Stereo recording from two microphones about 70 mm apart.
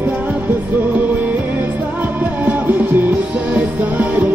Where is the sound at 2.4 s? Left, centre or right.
Right.